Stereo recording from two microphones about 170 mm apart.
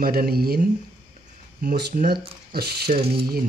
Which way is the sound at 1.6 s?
55° right (ahead or behind).